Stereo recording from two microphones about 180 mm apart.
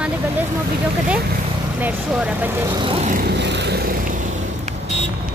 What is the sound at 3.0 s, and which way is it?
Vehicle, 50° right (ahead or behind).